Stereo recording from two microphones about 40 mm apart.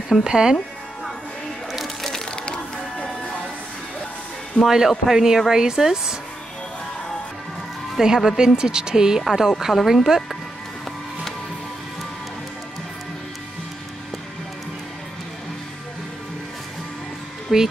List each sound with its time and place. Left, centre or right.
0.2 s a man's voice: centre
2.0 s music: centre
4.6 s a man's voice: centre
8.0 s a man's voice: centre
9.2 s speech: centre
17.5 s speech: centre